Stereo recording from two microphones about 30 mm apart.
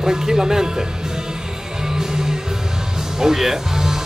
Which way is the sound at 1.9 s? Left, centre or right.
Centre.